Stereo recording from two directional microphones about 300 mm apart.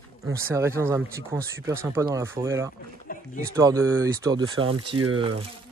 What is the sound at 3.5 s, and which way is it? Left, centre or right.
Speech, centre.